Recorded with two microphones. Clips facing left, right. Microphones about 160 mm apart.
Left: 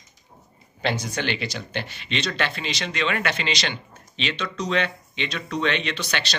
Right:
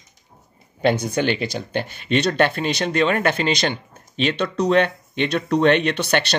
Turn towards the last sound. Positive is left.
turn(degrees=-60)  # may be behind; listen again after turning